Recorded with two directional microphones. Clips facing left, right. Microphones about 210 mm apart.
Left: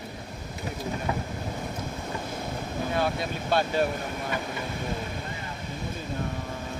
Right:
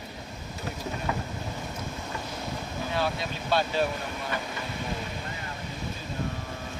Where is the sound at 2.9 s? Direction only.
50° left (ahead or behind).